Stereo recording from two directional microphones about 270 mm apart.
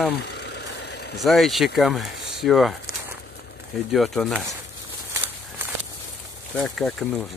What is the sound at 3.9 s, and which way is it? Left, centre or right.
Speech, centre.